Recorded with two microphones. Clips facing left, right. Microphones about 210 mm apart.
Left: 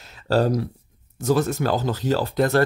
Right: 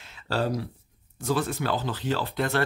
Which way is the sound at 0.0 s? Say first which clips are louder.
Left 7 dB; 40° left (ahead or behind).